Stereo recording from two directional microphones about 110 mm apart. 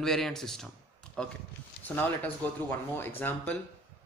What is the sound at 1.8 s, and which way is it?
Speech, 15° left (ahead or behind).